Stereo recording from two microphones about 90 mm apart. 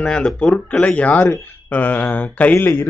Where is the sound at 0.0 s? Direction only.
10° left (ahead or behind).